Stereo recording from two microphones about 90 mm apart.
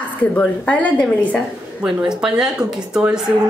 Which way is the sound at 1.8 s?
5° right (ahead or behind).